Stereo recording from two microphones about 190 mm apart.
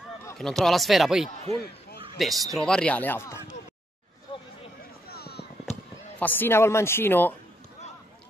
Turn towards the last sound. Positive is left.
turn(degrees=10)  # may be behind; listen again after turning